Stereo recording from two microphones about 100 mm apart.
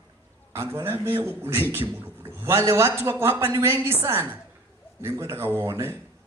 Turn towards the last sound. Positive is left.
turn(degrees=-25)  # may be behind; listen again after turning